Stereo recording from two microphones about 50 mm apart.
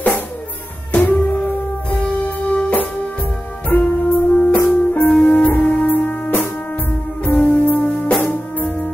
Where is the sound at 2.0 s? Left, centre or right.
Left.